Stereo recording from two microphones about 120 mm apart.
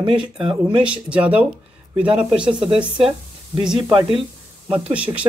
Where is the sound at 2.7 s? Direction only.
10° right (ahead or behind).